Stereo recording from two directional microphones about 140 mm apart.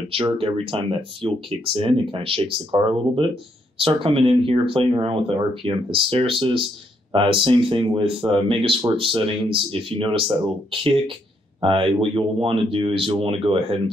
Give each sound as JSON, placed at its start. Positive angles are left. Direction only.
{"t": 0.1, "sound": "speech", "side_deg": -40}